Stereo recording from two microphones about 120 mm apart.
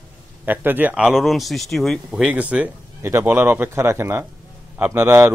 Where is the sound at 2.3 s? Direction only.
10° right (ahead or behind).